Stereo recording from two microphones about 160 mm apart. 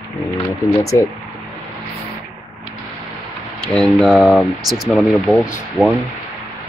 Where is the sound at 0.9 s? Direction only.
20° left (ahead or behind).